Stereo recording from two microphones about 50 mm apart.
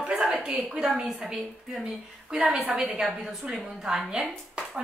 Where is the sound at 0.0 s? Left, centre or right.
Centre.